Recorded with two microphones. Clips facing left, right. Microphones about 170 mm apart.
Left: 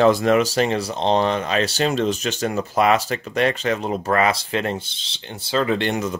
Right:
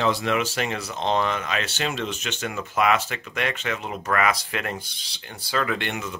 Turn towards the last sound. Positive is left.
turn(degrees=35)  # may be behind; listen again after turning